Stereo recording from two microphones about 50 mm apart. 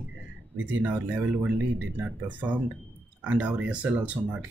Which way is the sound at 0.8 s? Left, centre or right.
Right.